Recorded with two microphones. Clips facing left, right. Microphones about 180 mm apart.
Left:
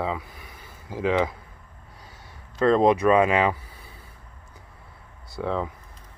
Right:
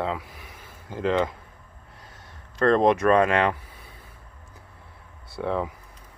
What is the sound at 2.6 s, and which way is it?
Speech, 5° left (ahead or behind).